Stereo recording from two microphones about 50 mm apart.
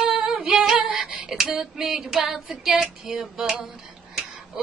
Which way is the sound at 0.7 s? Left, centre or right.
Centre.